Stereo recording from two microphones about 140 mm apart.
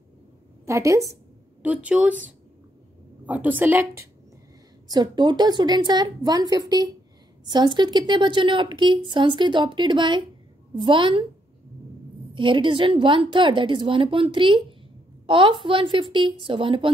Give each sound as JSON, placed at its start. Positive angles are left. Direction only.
{"t": 0.7, "sound": "a woman's voice", "side_deg": -20}
{"t": 1.6, "sound": "a woman's voice", "side_deg": -10}
{"t": 4.8, "sound": "a woman's voice", "side_deg": -30}
{"t": 12.4, "sound": "a woman's voice", "side_deg": -35}